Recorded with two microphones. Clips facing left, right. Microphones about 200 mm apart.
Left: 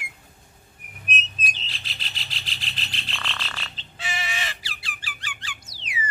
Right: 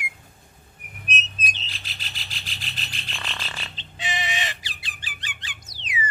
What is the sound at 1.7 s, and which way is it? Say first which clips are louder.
Rub: left 1 dB; 45° right (ahead or behind).